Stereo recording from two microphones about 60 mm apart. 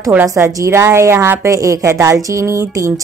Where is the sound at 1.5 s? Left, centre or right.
Right.